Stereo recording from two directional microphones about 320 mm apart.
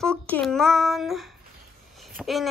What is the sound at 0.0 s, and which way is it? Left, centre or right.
Speech, centre.